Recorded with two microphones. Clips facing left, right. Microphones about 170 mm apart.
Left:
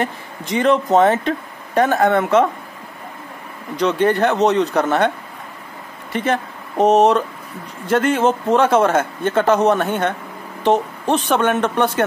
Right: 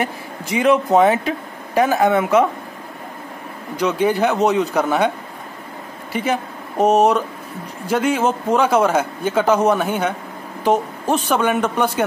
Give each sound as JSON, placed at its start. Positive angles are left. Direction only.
{"t": 0.0, "sound": "speech", "side_deg": -5}
{"t": 3.7, "sound": "speech", "side_deg": -5}
{"t": 6.1, "sound": "speech", "side_deg": -5}